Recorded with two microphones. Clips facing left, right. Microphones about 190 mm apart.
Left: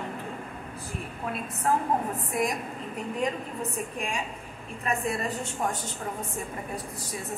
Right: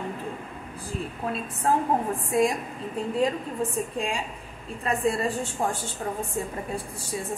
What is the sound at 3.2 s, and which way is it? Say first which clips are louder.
A woman's voice: right 5 dB; 30° right (ahead or behind).